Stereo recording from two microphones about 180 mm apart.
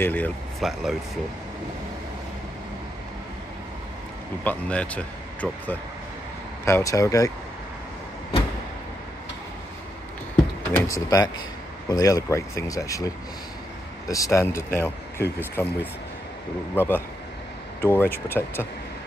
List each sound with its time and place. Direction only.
0.0 s speech: 10° left (ahead or behind)
0.6 s speech: centre (ahead or behind)
4.5 s speech: 5° left (ahead or behind)
10.7 s speech: 15° left (ahead or behind)